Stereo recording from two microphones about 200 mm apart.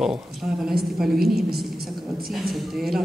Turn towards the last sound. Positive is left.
turn(degrees=0)  # may be behind; listen again after turning